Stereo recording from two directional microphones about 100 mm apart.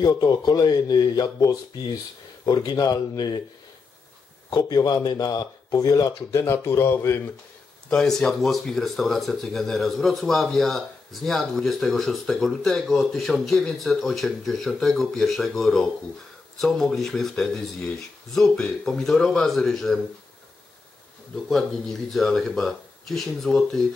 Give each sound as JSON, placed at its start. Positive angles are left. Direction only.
{"t": 0.0, "sound": "speech", "side_deg": 40}
{"t": 4.5, "sound": "speech", "side_deg": 40}
{"t": 7.9, "sound": "speech", "side_deg": 5}
{"t": 21.5, "sound": "speech", "side_deg": 0}